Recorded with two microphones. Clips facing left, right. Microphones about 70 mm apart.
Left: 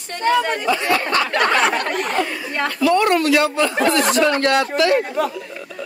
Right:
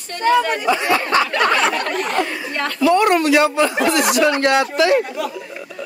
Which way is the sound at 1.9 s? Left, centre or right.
Centre.